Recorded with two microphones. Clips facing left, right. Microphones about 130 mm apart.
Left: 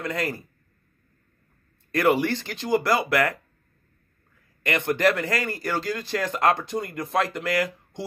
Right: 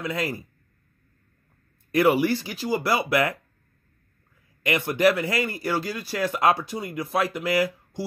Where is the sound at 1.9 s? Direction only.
10° right (ahead or behind).